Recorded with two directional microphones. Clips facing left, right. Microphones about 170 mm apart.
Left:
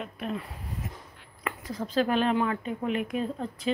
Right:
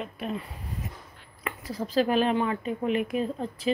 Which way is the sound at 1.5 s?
5° right (ahead or behind).